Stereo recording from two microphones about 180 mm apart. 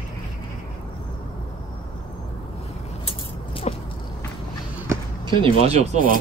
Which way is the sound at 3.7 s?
35° left (ahead or behind).